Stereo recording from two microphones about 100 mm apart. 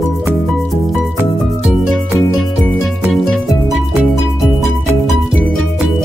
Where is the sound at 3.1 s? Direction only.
Centre (ahead or behind).